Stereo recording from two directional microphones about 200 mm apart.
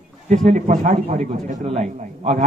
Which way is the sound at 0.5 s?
35° right (ahead or behind).